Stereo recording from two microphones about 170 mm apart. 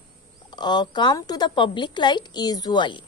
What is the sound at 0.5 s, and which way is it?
A woman's voice, 25° left (ahead or behind).